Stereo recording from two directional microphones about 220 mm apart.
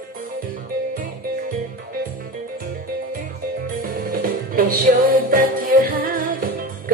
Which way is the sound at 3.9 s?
40° right (ahead or behind).